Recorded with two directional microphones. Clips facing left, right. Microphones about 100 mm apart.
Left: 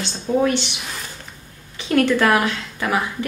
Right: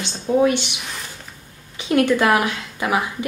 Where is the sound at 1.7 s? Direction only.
15° right (ahead or behind).